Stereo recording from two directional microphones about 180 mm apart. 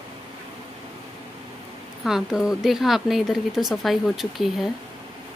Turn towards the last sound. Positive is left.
turn(degrees=0)  # may be behind; listen again after turning